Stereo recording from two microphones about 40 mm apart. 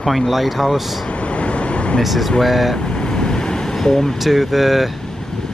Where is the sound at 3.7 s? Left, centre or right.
Centre.